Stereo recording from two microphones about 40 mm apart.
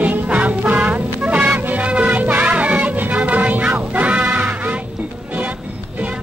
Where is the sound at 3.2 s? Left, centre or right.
Right.